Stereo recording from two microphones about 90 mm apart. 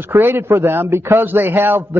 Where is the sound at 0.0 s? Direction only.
25° right (ahead or behind).